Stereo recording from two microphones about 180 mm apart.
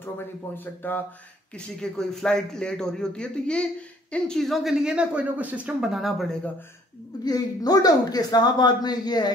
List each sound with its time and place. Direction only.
0.6 s speech: 10° left (ahead or behind)
7.2 s a man's voice: 20° left (ahead or behind)